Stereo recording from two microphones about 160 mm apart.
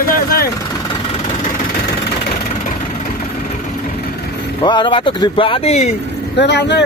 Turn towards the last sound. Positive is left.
turn(degrees=90)